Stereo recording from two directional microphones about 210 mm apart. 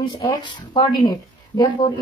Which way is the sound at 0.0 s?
20° left (ahead or behind).